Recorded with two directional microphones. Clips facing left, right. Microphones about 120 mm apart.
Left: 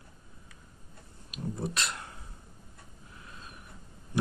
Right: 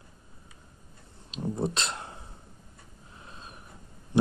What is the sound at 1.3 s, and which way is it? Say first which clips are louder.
Speech: right 5 dB; 25° right (ahead or behind).